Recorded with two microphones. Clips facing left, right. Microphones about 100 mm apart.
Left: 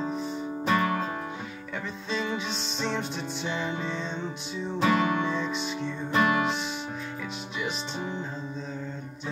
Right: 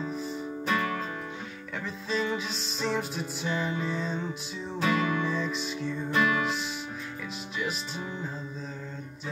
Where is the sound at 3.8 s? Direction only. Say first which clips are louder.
Right 1 dB; 5° right (ahead or behind).